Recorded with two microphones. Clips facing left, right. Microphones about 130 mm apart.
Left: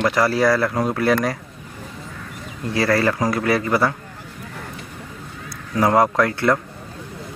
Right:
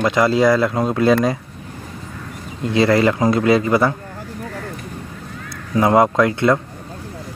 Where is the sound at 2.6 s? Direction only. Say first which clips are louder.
Right 4 dB; 20° right (ahead or behind).